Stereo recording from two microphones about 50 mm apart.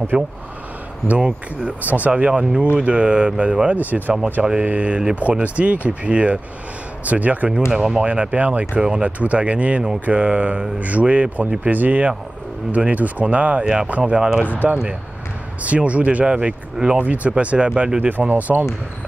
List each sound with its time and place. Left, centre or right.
0.1 s speech: centre
7.7 s speech: centre
8.0 s speech: right
17.0 s speech: right
18.0 s speech: right